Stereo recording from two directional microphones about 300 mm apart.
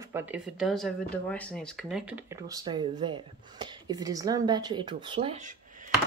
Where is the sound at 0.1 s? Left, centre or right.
Centre.